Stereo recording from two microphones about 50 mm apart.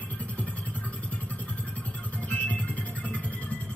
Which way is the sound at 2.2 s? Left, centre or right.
Left.